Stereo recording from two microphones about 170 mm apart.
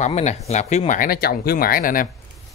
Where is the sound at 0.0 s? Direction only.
40° left (ahead or behind).